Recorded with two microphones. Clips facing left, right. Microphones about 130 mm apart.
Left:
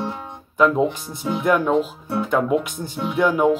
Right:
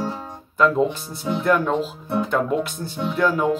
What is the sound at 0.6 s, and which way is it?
Speech, 15° left (ahead or behind).